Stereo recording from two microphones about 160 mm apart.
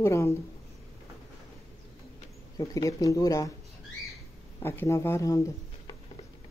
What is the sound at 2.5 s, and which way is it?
Speech, 25° left (ahead or behind).